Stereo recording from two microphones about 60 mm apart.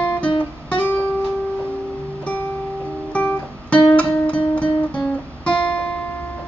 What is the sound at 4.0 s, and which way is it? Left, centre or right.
Guitar, left.